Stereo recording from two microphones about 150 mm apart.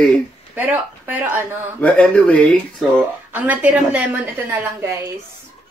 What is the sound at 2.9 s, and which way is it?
A woman's voice, 10° right (ahead or behind).